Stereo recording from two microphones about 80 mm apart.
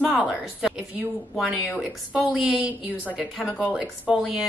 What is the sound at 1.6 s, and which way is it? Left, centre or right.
Speech, left.